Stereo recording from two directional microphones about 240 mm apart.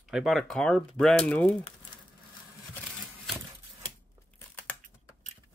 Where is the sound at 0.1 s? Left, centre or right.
Centre.